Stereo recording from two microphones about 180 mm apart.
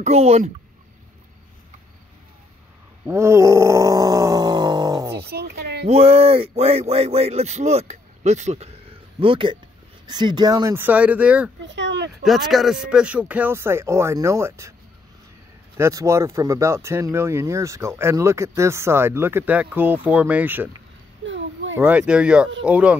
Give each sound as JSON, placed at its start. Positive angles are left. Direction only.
{"t": 0.0, "sound": "speech", "side_deg": -35}
{"t": 3.1, "sound": "a sound", "side_deg": -15}
{"t": 5.1, "sound": "a sound", "side_deg": -60}
{"t": 5.9, "sound": "speech", "side_deg": -35}
{"t": 11.6, "sound": "speech", "side_deg": -85}
{"t": 12.3, "sound": "speech", "side_deg": 0}
{"t": 15.8, "sound": "speech", "side_deg": -15}
{"t": 21.7, "sound": "speech", "side_deg": -10}